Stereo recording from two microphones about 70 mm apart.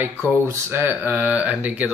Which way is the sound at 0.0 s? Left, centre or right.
Right.